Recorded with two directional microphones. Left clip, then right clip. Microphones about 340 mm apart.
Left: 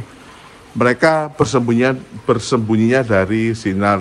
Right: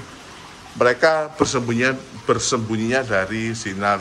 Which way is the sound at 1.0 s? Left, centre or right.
Centre.